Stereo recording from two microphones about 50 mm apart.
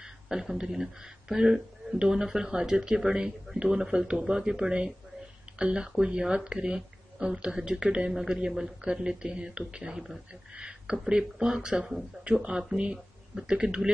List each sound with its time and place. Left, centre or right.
0.0 s speech: centre
12.4 s speech: centre